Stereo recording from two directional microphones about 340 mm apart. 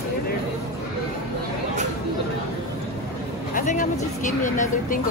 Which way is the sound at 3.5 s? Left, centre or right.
Left.